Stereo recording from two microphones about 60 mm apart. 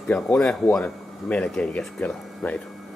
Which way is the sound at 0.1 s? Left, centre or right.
Left.